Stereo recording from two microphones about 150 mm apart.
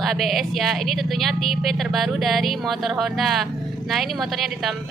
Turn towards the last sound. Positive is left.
turn(degrees=0)  # may be behind; listen again after turning